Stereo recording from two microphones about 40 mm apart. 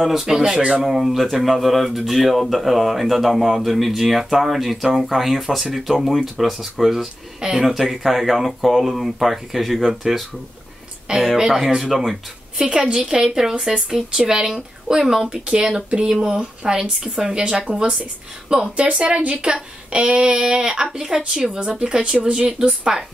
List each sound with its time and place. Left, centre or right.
0.0 s speech: centre
0.6 s speech: right
0.8 s speech: centre
7.6 s speech: centre
11.3 s speech: centre
12.5 s speech: right